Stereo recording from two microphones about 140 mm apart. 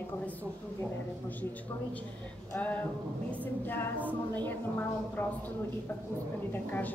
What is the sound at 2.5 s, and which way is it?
Speech, 10° left (ahead or behind).